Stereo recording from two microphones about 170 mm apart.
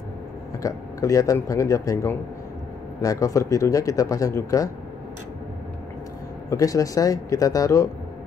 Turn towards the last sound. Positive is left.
turn(degrees=20)  # may be behind; listen again after turning